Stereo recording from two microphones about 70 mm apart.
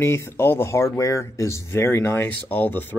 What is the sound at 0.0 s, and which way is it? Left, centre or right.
Speech, left.